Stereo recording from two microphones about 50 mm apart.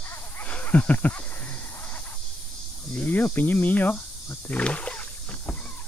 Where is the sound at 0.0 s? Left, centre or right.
Left.